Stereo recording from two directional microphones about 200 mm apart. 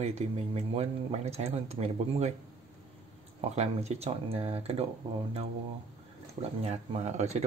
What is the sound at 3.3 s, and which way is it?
Speech, 35° right (ahead or behind).